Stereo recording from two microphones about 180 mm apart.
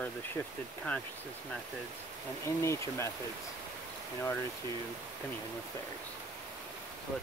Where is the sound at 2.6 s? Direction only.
15° left (ahead or behind).